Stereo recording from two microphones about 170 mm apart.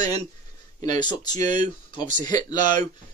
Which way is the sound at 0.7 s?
25° left (ahead or behind).